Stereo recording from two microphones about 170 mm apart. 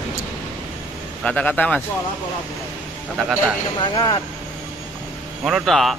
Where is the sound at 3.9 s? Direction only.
25° left (ahead or behind).